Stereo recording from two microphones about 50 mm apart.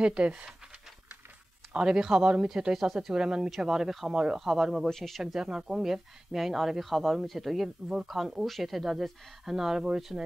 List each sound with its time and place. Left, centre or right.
0.0 s speech: centre
1.7 s speech: centre
4.8 s speech: centre
5.2 s speech: centre